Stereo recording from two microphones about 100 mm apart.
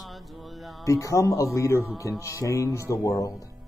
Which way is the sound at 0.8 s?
30° left (ahead or behind).